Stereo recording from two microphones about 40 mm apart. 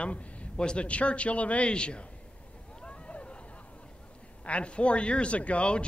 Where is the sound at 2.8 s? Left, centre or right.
Left.